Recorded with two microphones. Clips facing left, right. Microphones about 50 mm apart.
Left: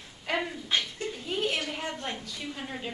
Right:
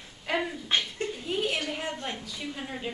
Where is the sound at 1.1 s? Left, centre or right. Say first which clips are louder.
Even; centre.